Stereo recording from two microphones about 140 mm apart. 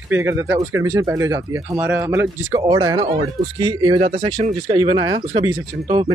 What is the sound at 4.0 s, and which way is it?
Speech, 50° right (ahead or behind).